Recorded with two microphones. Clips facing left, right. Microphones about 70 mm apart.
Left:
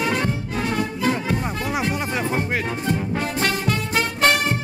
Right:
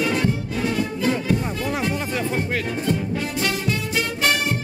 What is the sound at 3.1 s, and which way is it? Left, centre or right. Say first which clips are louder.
Music: left 1 dB; left.